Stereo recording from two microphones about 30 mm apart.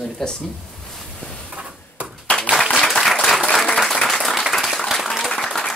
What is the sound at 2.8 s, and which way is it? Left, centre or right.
Applause, centre.